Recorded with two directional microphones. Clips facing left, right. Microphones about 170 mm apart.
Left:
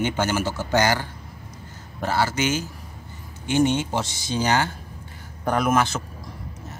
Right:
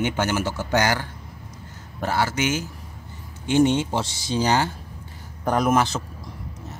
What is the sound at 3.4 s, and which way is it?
Speech, 30° right (ahead or behind).